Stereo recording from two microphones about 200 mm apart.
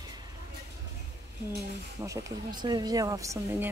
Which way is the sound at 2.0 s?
15° right (ahead or behind).